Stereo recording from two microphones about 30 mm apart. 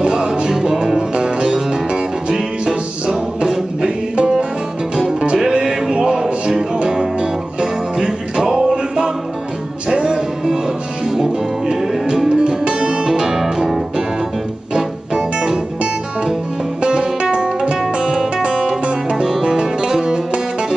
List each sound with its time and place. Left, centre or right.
0.0 s music: right
0.5 s music: centre
3.1 s music: centre
4.2 s music: right
5.7 s music: right
10.1 s music: centre
12.3 s music: right
13.2 s music: centre
17.6 s music: right